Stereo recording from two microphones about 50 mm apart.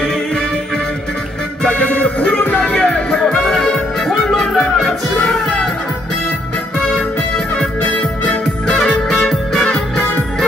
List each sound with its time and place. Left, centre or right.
1.7 s music: left
2.7 s music: centre
3.1 s music: centre
6.9 s music: centre
8.7 s music: centre